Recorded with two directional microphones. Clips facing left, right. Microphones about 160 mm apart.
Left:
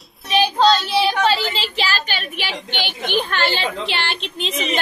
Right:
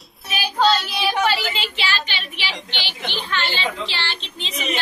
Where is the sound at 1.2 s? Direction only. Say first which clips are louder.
Left 3 dB; 35° left (ahead or behind).